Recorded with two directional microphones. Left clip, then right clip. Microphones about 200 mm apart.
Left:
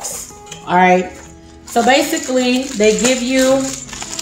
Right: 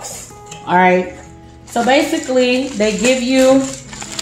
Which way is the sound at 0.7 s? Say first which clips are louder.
Even; 15° right (ahead or behind).